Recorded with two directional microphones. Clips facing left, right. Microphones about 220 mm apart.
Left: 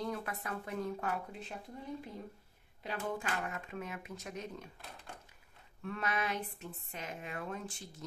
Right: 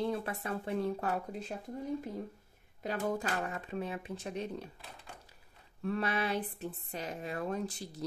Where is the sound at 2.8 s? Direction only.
45° right (ahead or behind).